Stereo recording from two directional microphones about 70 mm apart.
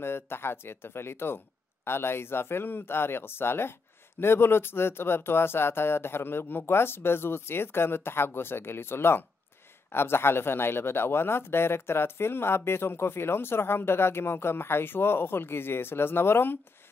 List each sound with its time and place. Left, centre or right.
0.0 s speech: left